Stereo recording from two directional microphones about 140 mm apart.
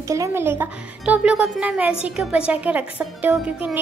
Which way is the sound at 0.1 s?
20° right (ahead or behind).